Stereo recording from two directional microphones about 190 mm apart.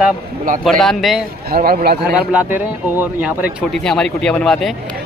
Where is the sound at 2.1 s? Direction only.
10° right (ahead or behind).